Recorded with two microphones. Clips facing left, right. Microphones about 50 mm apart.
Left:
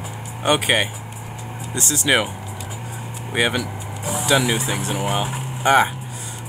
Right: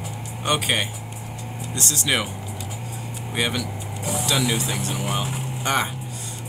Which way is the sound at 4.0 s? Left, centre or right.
Centre.